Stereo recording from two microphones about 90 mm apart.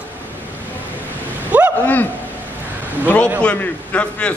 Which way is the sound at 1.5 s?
15° right (ahead or behind).